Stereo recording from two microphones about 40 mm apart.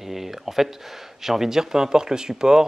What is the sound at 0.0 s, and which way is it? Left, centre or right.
Speech, centre.